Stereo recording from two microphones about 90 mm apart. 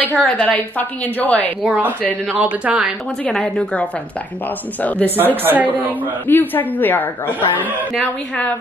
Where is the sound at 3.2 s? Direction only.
10° left (ahead or behind).